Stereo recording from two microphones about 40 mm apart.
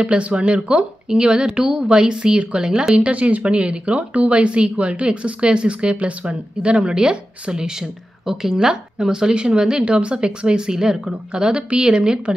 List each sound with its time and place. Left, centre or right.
0.0 s speech: right
3.0 s speech: right